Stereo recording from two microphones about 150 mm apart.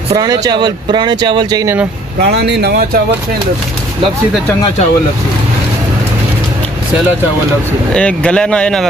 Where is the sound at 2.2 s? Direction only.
90° right.